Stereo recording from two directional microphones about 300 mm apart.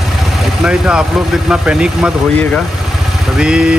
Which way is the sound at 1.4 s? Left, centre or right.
Centre.